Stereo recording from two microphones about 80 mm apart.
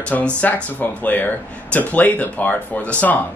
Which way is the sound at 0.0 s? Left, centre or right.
Centre.